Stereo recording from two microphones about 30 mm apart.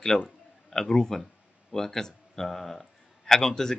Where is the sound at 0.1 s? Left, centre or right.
Left.